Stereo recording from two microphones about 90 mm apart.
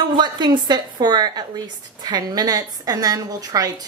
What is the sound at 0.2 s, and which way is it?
A woman's voice, 55° right (ahead or behind).